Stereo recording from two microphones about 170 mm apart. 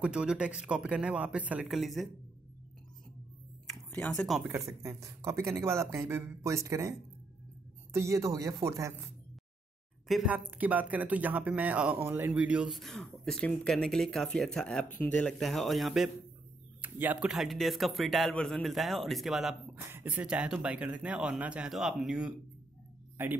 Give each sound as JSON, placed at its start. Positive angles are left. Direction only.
{"t": 0.0, "sound": "a man's voice", "side_deg": -5}
{"t": 3.6, "sound": "a sound", "side_deg": 5}
{"t": 4.8, "sound": "speech", "side_deg": -15}
{"t": 10.0, "sound": "a man's voice", "side_deg": -5}